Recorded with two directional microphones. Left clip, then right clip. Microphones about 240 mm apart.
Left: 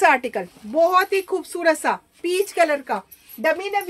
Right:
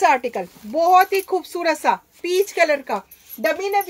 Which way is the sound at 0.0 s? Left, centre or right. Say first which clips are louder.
Even; left.